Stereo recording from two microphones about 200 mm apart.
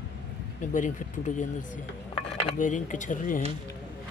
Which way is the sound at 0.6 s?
40° left (ahead or behind).